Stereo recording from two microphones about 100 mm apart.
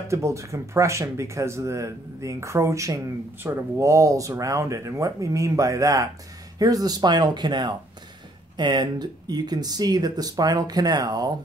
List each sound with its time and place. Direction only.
0.1 s speech: 30° right (ahead or behind)